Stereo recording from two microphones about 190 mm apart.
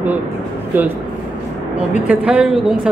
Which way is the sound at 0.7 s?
10° right (ahead or behind).